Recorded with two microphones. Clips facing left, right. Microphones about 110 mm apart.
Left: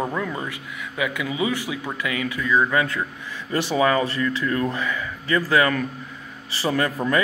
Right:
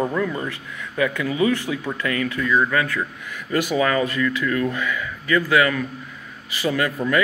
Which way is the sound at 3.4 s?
30° left (ahead or behind).